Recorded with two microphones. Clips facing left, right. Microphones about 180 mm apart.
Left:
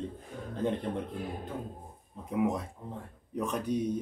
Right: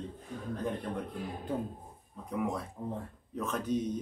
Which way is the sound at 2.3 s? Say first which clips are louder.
Left 4 dB; 20° left (ahead or behind).